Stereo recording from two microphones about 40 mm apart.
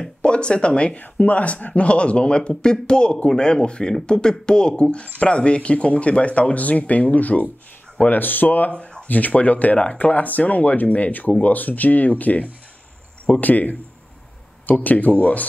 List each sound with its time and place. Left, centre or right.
0.2 s speech: left
1.1 s speech: left
9.0 s speech: left